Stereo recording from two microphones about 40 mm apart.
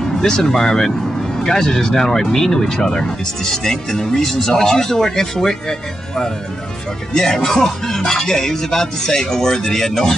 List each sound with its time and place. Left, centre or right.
0.0 s speech: centre
1.4 s music: centre